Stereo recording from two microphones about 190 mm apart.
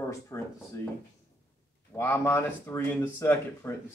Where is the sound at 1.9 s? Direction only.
15° left (ahead or behind).